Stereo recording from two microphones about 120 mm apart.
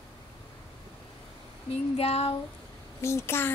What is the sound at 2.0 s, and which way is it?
Speech, 60° left (ahead or behind).